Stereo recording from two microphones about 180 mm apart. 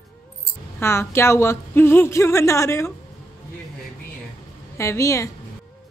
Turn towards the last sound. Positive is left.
turn(degrees=15)  # may be behind; listen again after turning